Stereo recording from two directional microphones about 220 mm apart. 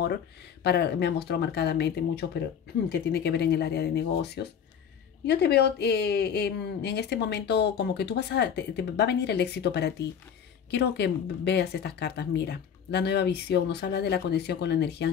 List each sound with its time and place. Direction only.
0.7 s speech: 50° left (ahead or behind)